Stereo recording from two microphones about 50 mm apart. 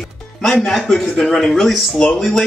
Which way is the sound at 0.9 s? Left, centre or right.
Centre.